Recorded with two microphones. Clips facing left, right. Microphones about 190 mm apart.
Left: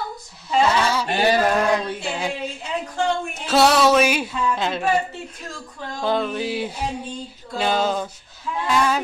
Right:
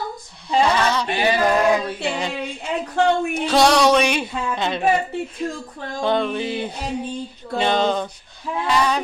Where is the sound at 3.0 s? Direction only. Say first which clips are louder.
Right 5 dB; 65° right (ahead or behind).